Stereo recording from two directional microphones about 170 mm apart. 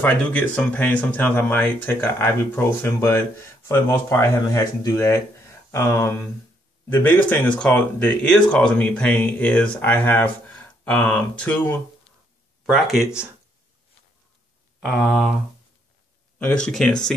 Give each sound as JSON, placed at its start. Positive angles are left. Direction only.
{"t": 0.0, "sound": "speech", "side_deg": 10}
{"t": 14.8, "sound": "speech", "side_deg": 0}
{"t": 16.3, "sound": "speech", "side_deg": 5}